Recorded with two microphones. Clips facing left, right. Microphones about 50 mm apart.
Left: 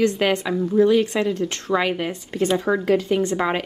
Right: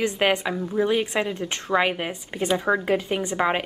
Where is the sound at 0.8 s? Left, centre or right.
Centre.